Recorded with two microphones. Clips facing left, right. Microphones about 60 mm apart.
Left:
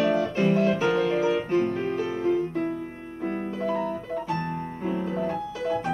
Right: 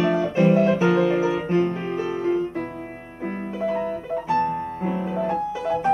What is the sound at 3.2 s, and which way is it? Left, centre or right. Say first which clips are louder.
Music: right 2 dB; right.